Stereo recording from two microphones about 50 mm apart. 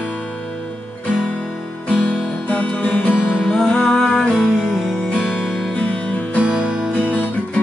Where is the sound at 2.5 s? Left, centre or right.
Left.